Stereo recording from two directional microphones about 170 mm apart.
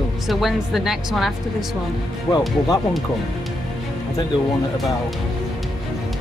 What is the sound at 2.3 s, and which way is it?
Speech, 15° left (ahead or behind).